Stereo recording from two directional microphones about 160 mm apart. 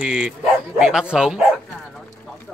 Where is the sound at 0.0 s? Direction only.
5° right (ahead or behind).